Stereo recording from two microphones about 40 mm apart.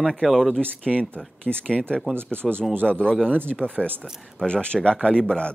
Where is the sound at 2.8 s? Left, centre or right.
Left.